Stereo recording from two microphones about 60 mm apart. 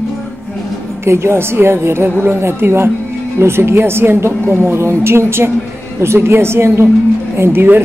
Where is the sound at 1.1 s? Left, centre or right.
Right.